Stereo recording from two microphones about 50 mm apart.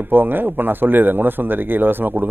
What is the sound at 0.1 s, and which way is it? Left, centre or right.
A man's voice, right.